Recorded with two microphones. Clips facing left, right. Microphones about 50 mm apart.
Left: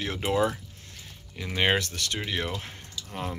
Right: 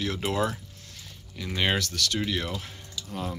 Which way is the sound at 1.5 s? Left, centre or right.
Left.